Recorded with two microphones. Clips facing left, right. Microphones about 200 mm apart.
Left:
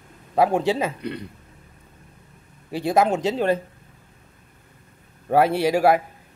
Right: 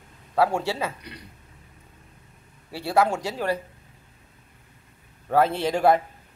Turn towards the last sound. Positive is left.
turn(degrees=10)  # may be behind; listen again after turning